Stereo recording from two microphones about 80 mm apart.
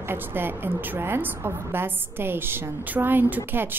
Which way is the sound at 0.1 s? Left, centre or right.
Right.